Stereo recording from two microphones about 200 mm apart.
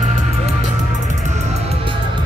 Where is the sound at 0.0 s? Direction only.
35° right (ahead or behind).